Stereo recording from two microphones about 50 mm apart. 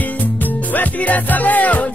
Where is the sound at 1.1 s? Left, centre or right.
Left.